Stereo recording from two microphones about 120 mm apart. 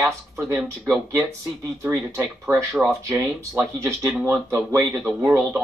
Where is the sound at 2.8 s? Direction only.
Centre (ahead or behind).